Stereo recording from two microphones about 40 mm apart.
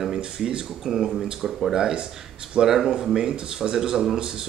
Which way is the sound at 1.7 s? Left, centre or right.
Right.